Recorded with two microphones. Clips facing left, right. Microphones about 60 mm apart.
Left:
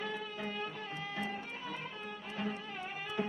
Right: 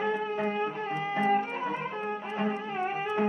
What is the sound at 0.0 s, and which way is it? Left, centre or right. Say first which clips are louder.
Music: right 11 dB; right.